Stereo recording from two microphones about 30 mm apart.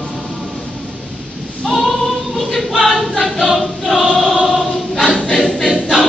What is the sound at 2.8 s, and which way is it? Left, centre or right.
Choir, left.